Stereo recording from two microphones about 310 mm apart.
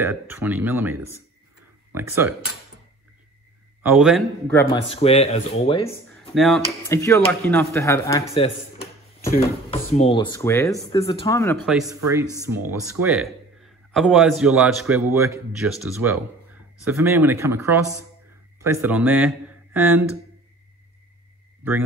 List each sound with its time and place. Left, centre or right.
0.0 s speech: centre
2.1 s speech: centre
3.8 s speech: centre
6.3 s speech: centre
11.6 s a man's voice: centre